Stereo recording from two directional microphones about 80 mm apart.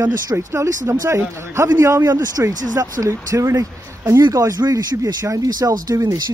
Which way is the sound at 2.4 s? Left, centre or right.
Right.